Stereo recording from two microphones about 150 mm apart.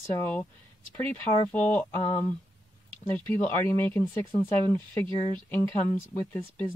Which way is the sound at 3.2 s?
10° left (ahead or behind).